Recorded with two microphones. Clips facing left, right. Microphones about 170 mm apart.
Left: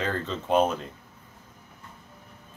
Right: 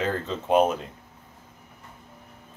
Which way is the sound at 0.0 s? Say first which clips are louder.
Right 2 dB; 10° right (ahead or behind).